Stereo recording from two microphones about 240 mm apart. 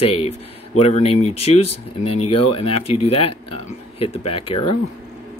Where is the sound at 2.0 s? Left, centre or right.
Left.